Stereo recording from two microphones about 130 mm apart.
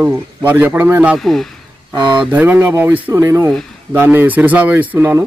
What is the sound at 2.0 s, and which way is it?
Speech, 35° right (ahead or behind).